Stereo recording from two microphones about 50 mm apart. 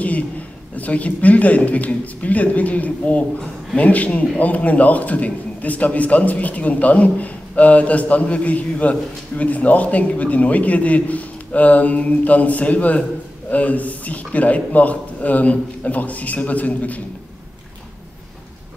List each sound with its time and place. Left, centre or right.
0.7 s a man's voice: left